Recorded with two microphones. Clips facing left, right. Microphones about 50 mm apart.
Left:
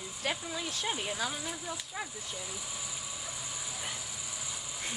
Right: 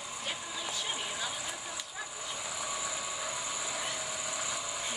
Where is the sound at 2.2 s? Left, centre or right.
Right.